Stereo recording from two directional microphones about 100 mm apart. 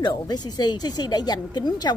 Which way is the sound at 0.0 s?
45° left (ahead or behind).